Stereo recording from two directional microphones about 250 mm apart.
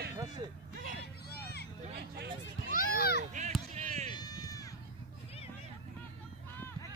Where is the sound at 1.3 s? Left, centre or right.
Left.